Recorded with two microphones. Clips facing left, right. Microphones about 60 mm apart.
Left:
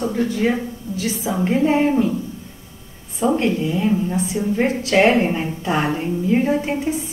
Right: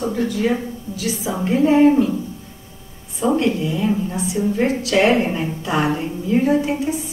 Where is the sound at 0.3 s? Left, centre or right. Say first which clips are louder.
Even; left.